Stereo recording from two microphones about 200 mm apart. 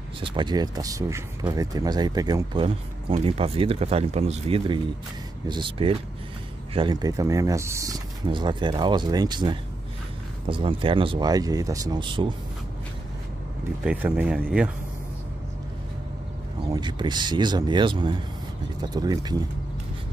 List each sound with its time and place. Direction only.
0.2 s speech: 25° right (ahead or behind)
13.8 s speech: 5° right (ahead or behind)
16.6 s speech: 20° right (ahead or behind)